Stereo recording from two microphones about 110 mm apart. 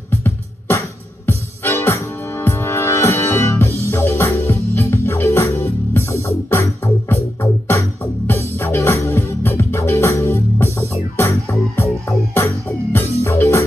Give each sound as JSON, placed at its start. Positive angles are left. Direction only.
{"t": 0.1, "sound": "music", "side_deg": 25}